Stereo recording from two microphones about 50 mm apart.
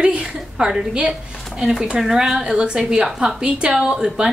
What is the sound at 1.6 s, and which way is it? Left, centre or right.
A woman's voice, centre.